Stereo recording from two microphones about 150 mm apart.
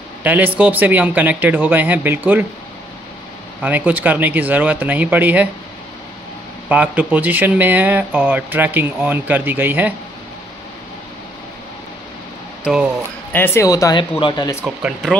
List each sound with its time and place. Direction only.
0.2 s a man's voice: 10° right (ahead or behind)
3.6 s speech: 10° right (ahead or behind)
6.7 s speech: 10° right (ahead or behind)
12.6 s speech: 5° right (ahead or behind)
13.3 s speech: 15° left (ahead or behind)
14.6 s speech: 10° right (ahead or behind)